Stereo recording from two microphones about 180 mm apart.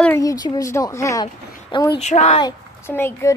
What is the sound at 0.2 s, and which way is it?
A woman's voice, 20° left (ahead or behind).